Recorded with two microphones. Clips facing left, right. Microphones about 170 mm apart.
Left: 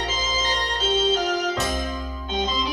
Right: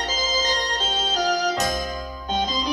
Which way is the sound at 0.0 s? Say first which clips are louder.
Right 2 dB; 40° right (ahead or behind).